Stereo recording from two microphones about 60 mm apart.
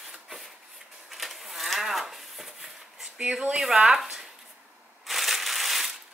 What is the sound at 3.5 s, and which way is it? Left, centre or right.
Speech, centre.